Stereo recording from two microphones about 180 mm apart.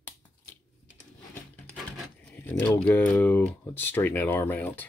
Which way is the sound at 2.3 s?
5° left (ahead or behind).